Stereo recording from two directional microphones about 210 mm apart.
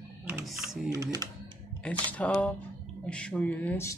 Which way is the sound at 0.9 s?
15° right (ahead or behind).